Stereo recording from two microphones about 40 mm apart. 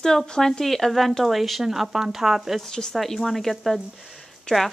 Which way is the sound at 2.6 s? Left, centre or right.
Centre.